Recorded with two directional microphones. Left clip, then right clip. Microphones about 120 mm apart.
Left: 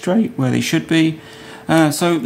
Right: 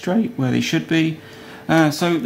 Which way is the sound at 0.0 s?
25° left (ahead or behind).